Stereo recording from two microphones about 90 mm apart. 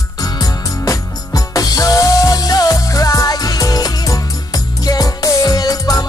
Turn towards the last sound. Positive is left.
turn(degrees=40)  # may be behind; listen again after turning